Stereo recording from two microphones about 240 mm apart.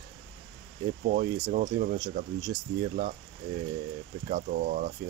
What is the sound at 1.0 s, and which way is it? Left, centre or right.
Speech, right.